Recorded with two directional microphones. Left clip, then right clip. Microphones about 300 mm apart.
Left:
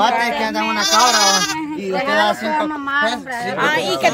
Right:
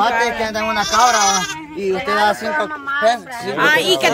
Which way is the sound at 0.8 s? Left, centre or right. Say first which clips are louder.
Even; centre.